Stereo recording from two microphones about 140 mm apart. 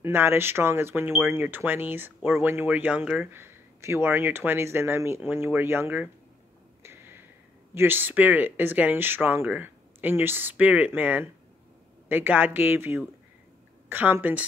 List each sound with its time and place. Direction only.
0.0 s speech: 15° right (ahead or behind)
6.8 s a sound: 15° right (ahead or behind)
7.7 s speech: 15° right (ahead or behind)